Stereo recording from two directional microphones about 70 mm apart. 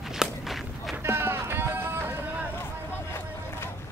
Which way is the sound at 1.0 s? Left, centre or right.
Right.